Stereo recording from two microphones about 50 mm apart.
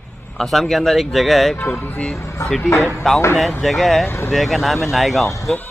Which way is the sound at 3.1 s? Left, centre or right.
Centre.